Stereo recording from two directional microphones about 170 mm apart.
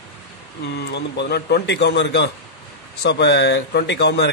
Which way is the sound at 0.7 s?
90° left.